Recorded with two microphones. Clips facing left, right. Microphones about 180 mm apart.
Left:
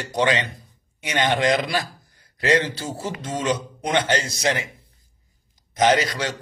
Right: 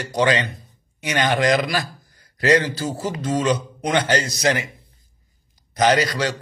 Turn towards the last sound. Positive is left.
turn(degrees=25)  # may be behind; listen again after turning